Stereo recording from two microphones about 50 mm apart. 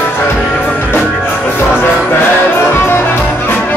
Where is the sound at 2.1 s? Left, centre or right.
Left.